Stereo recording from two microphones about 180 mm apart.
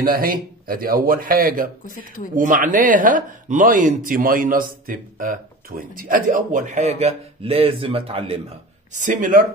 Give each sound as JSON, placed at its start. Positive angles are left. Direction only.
{"t": 0.0, "sound": "speech", "side_deg": -55}
{"t": 8.9, "sound": "speech", "side_deg": -45}